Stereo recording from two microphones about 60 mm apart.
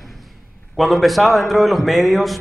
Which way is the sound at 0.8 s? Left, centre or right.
Centre.